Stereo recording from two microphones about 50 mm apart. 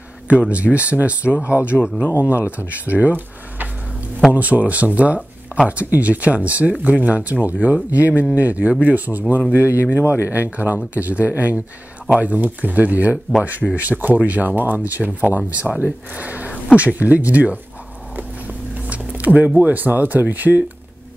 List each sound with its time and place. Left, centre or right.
0.3 s speech: right
2.1 s speech: right
9.6 s speech: left
10.5 s speech: right
15.7 s speech: centre
16.1 s speech: right
18.9 s a sound: right
19.6 s speech: right